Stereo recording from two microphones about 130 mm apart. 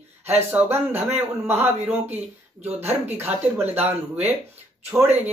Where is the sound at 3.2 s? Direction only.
15° right (ahead or behind).